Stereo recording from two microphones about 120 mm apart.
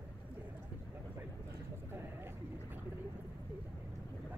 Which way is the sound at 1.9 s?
20° right (ahead or behind).